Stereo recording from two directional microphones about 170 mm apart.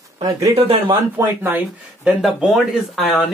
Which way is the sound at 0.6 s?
35° right (ahead or behind).